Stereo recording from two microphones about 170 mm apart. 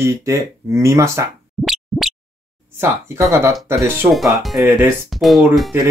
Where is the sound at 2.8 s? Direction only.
15° right (ahead or behind); by 5.7 s centre (ahead or behind).